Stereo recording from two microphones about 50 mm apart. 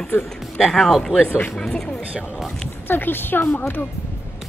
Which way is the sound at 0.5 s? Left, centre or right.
Centre.